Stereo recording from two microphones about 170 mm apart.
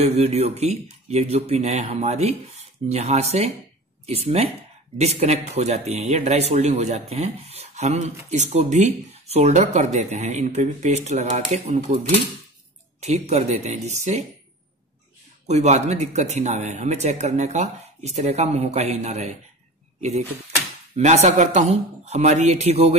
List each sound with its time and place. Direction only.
0.0 s speech: 35° right (ahead or behind)
15.4 s speech: 40° right (ahead or behind)